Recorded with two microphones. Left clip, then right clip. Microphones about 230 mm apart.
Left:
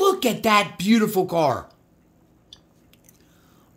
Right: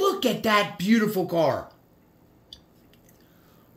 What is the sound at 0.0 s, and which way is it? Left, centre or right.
Speech, left.